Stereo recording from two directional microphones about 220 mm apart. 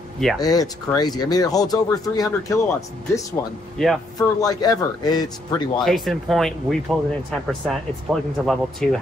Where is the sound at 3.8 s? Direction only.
Centre (ahead or behind).